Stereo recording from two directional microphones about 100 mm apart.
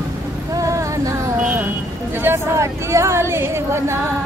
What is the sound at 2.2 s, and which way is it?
A woman's voice, 25° right (ahead or behind).